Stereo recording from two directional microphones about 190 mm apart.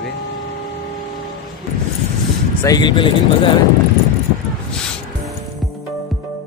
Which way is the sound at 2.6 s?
20° left (ahead or behind).